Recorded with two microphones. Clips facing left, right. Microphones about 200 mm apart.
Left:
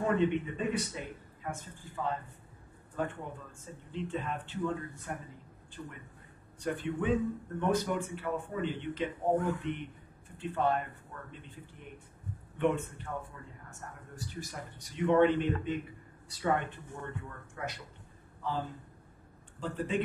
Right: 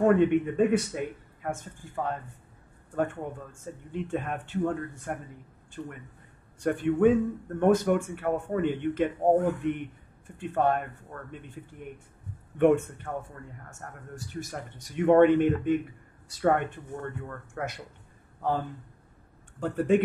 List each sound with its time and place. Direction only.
0.0 s speech: 55° right (ahead or behind)
12.5 s speech: 50° right (ahead or behind)
19.6 s speech: 50° right (ahead or behind)